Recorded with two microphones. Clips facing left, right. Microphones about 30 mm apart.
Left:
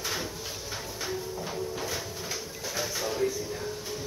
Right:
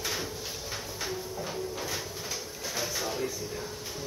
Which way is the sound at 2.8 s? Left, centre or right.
Centre.